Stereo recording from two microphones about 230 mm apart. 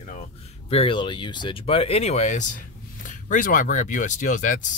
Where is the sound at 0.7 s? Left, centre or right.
Left.